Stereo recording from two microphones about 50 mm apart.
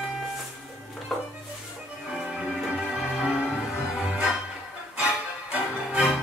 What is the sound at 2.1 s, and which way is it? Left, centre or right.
Music, right.